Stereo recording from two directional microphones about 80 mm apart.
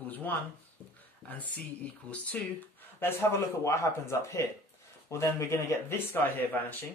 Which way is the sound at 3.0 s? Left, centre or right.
Left.